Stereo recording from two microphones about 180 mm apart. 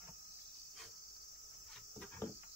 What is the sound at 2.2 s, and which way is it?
Cricket, 15° left (ahead or behind).